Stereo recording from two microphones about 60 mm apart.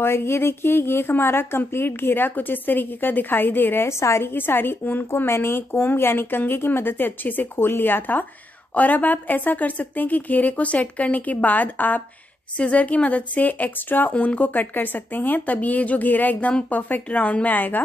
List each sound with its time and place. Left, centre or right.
0.0 s a woman's voice: left
3.8 s a woman's voice: left